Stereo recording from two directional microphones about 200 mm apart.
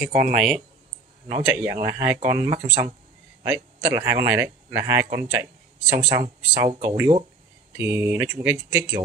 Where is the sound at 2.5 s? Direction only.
30° right (ahead or behind).